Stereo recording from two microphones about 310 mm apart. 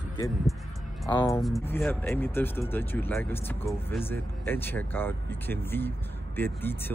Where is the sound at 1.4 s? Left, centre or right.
Centre.